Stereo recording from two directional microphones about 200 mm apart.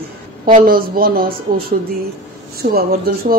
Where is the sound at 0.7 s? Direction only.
45° right (ahead or behind).